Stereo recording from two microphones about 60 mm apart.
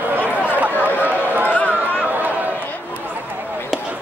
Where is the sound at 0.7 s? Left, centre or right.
Left.